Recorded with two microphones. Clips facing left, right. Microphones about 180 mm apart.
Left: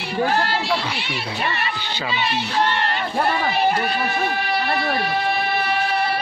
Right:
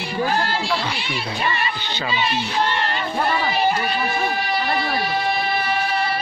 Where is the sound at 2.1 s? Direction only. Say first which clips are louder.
Even; 60° left (ahead or behind).